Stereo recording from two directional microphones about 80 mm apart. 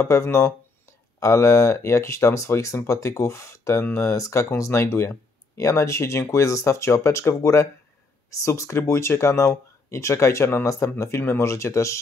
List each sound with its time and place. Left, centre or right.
0.0 s speech: left